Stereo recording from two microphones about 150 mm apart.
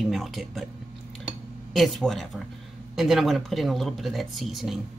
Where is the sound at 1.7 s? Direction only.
Centre (ahead or behind).